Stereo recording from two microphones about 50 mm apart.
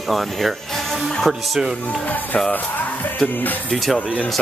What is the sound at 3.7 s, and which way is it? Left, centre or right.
Speech, centre.